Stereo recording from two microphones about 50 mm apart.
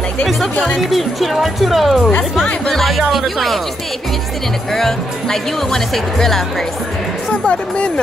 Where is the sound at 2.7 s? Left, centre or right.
Centre.